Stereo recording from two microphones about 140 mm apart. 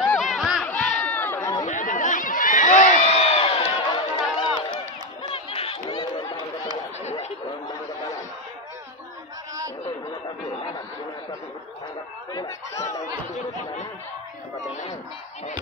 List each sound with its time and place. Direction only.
0.2 s battle cry: centre (ahead or behind)
0.7 s chatter: 10° left (ahead or behind)
1.7 s a sound: 70° left (ahead or behind); by 5.8 s 40° left (ahead or behind)
5.9 s chatter: 35° left (ahead or behind)
7.1 s snicker: 55° left (ahead or behind)
12.4 s chatter: 20° left (ahead or behind)